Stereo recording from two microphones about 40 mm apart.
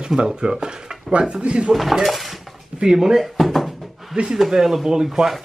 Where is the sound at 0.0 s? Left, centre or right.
Centre.